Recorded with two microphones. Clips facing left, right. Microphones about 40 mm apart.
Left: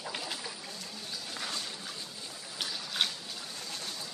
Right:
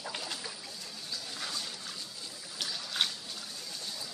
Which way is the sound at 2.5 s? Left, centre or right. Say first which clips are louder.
Even; centre.